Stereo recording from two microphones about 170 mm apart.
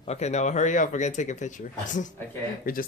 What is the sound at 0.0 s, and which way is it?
Speech, 40° left (ahead or behind).